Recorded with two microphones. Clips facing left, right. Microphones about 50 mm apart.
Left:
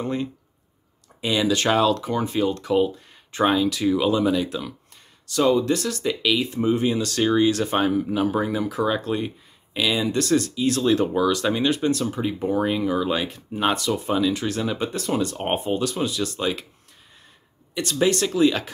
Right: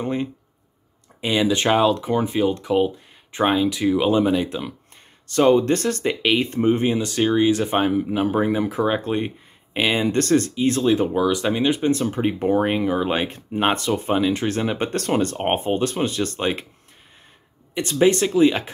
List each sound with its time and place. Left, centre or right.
0.0 s speech: right
5.3 s speech: right
6.9 s speech: centre; by 10.5 s right
10.5 s speech: right
10.8 s speech: centre; by 14.8 s right
14.8 s speech: right
15.3 s speech: right
17.7 s speech: right